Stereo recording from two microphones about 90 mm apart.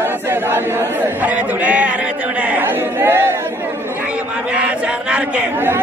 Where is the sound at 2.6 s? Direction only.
25° right (ahead or behind).